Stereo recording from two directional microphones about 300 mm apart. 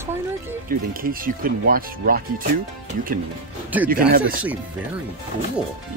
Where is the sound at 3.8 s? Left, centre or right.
Right.